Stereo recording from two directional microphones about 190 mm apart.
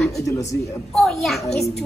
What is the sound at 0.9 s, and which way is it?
Speech, centre (ahead or behind).